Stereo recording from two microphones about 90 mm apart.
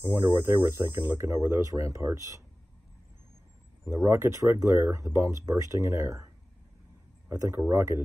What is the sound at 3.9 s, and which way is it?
Speech, 30° right (ahead or behind).